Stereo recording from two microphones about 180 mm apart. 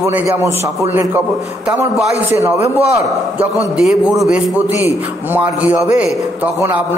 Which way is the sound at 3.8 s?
Centre (ahead or behind).